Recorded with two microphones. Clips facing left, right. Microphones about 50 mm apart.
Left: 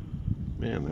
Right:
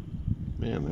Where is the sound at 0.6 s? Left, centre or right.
Centre.